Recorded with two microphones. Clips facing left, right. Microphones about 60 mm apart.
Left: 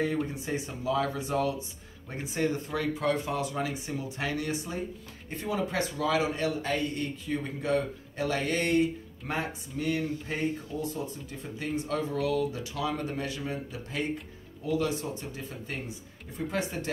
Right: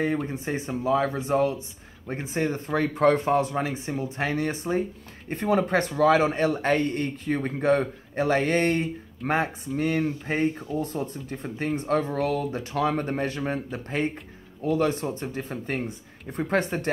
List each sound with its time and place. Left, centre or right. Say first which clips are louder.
0.3 s a man's voice: right 5 dB; right